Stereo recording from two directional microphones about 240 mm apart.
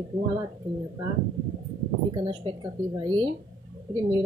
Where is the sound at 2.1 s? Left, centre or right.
Centre.